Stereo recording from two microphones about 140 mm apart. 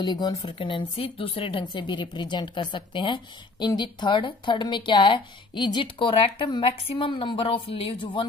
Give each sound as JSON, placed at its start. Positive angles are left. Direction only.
{"t": 0.0, "sound": "speech", "side_deg": 30}